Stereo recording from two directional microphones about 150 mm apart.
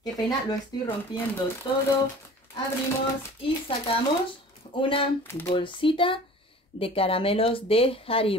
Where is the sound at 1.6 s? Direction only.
30° left (ahead or behind).